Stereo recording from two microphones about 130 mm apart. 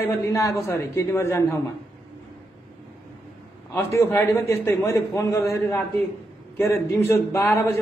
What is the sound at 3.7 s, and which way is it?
A man's voice, 20° left (ahead or behind).